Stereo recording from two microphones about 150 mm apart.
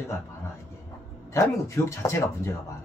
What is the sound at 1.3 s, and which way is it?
Speech, 20° left (ahead or behind).